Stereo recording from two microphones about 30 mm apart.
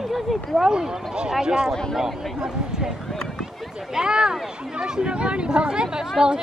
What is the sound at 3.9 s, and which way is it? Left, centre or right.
Speech, right.